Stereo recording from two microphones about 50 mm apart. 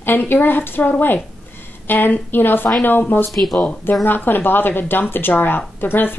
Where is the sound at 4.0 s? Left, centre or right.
Left.